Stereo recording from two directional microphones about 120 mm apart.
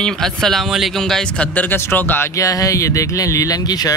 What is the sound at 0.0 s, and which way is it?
Speech, 5° left (ahead or behind).